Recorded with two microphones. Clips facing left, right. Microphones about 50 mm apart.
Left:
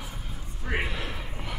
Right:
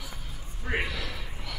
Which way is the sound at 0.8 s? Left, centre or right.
Left.